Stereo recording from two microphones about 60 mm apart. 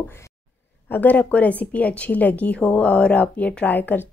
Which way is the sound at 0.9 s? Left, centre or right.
Left.